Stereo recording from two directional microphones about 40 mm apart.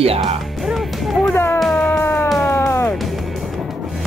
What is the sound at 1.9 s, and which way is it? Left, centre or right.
Cat, left.